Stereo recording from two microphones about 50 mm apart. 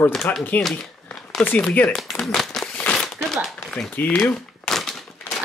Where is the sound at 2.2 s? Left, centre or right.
Centre.